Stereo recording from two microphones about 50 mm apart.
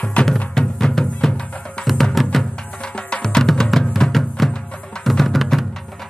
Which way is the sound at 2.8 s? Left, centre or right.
Centre.